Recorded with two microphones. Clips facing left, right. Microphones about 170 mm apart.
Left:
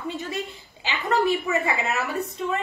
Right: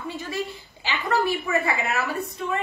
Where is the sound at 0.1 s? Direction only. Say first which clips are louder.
Even; 20° left (ahead or behind).